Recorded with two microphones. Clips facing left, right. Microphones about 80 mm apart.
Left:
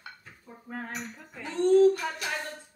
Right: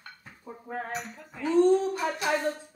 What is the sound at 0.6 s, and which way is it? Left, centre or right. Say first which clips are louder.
Female singing: right 3 dB; right.